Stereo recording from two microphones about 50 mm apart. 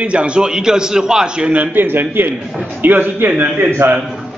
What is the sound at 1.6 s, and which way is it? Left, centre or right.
A man's voice, right.